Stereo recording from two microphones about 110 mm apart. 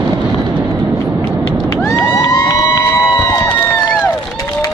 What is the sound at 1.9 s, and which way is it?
Cheering, 30° left (ahead or behind).